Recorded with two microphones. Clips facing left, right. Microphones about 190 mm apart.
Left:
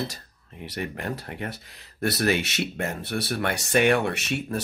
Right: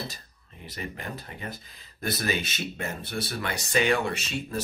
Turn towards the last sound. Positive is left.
turn(degrees=65)  # may be behind; listen again after turning